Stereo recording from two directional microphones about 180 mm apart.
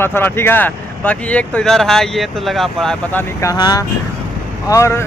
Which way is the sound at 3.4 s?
20° left (ahead or behind).